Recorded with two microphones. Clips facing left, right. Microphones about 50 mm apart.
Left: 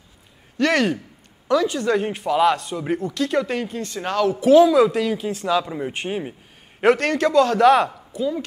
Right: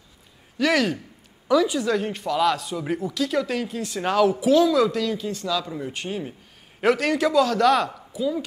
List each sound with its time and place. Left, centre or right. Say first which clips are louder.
0.6 s a man's voice: left 2 dB; centre
1.9 s speech: left 3 dB; centre
3.6 s a man's voice: right 1 dB; centre
4.5 s speech: left 9 dB; left
7.0 s a man's voice: left 2 dB; centre
7.4 s speech: left 4 dB; centre